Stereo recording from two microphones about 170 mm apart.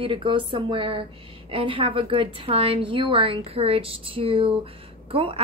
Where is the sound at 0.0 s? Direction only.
30° right (ahead or behind).